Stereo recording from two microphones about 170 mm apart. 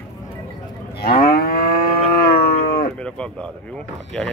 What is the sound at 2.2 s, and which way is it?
Cattle, 65° left (ahead or behind).